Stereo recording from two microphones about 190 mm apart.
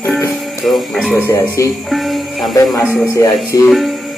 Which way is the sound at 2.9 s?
15° left (ahead or behind).